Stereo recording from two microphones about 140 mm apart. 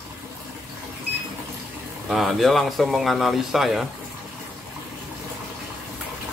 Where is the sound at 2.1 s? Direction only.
Centre (ahead or behind).